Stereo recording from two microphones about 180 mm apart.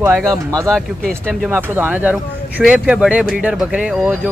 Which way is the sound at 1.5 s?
10° right (ahead or behind).